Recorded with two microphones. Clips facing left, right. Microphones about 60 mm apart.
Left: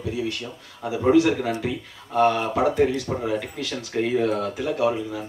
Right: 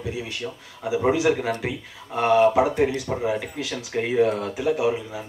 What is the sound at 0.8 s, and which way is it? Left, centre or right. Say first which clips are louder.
Speech: left 2 dB; centre.